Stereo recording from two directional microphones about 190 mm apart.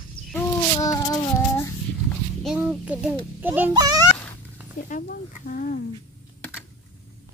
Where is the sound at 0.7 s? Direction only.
20° left (ahead or behind).